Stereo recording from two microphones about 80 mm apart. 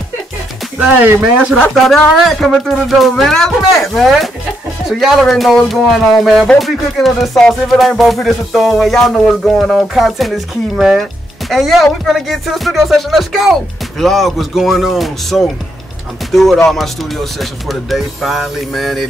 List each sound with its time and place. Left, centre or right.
0.7 s speech: centre
2.1 s music: centre